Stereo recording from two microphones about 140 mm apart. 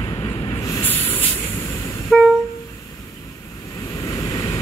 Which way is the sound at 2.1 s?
Centre (ahead or behind).